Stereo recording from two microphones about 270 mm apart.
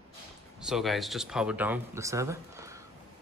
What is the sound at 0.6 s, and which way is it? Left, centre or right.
Speech, centre.